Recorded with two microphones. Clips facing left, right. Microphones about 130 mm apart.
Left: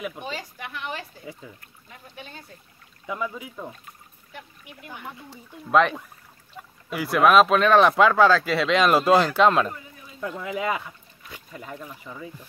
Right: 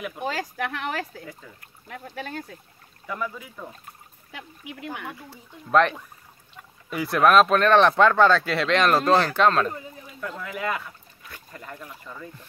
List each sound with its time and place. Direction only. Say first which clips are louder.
0.3 s speech: right 6 dB; 90° right
3.1 s speech: left 1 dB; 15° left (ahead or behind)
4.3 s speech: right 4 dB; 80° right
5.7 s speech: even; centre (ahead or behind)
6.6 s a sound: left 5 dB; 10° left (ahead or behind)
6.9 s speech: left 1 dB; centre (ahead or behind)